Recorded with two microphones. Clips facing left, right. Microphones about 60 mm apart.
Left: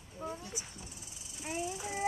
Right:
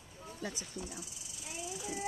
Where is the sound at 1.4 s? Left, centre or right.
Left.